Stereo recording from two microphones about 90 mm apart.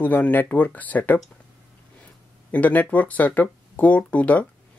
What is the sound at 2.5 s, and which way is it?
Speech, 15° left (ahead or behind).